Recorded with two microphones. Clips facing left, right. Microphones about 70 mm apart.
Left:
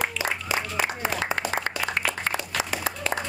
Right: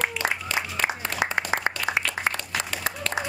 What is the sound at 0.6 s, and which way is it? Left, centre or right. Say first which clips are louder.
Applause: right 1 dB; centre.